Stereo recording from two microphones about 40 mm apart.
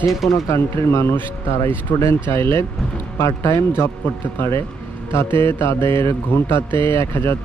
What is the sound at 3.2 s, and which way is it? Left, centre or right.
Speech, left.